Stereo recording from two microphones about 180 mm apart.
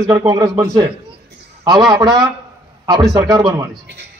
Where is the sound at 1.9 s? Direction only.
20° right (ahead or behind).